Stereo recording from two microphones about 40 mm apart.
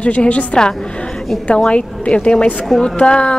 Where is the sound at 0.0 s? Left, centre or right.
Left.